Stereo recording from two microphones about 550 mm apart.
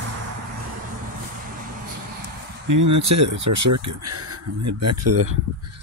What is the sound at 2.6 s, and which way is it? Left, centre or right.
Speech, right.